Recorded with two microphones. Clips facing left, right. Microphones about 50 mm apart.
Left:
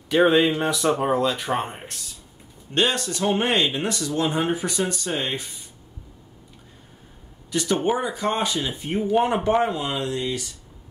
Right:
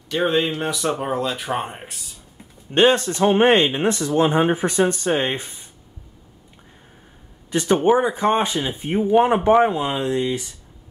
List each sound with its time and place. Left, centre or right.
0.1 s speech: centre
2.7 s speech: right
7.5 s speech: right